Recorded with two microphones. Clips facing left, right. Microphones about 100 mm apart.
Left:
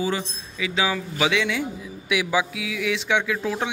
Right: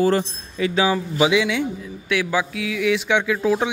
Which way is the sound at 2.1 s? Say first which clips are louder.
Right 1 dB; 10° left (ahead or behind).